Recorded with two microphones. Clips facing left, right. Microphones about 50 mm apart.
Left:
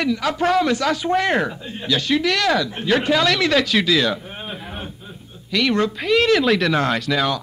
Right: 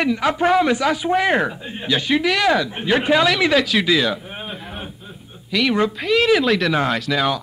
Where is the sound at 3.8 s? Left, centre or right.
Centre.